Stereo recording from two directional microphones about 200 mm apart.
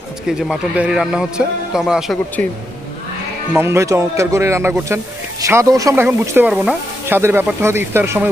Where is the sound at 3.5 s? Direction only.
10° right (ahead or behind).